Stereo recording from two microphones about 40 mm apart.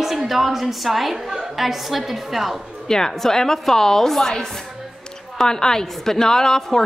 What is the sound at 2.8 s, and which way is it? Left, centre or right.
A woman's voice, centre.